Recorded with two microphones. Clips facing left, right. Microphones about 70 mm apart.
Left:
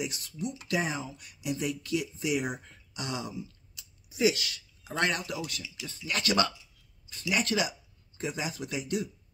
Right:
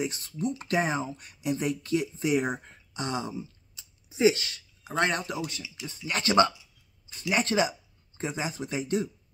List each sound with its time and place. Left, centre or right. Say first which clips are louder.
0.0 s speech: right 4 dB; right